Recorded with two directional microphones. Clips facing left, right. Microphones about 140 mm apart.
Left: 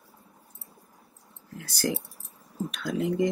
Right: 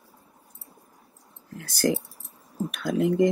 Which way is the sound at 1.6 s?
50° right (ahead or behind).